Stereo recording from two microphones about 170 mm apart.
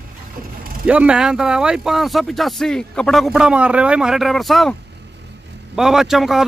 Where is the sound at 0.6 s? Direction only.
55° right (ahead or behind).